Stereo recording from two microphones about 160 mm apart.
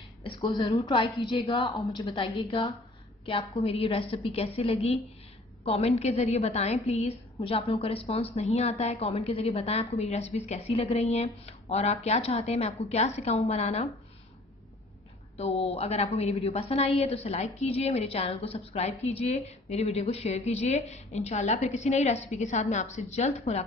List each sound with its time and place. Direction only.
0.2 s a woman's voice: 30° left (ahead or behind)
15.3 s a woman's voice: 40° left (ahead or behind)